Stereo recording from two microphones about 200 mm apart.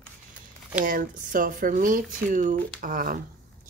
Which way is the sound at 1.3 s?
40° right (ahead or behind).